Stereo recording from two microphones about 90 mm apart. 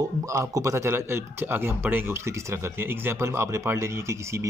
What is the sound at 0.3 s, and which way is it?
Speech, 35° right (ahead or behind).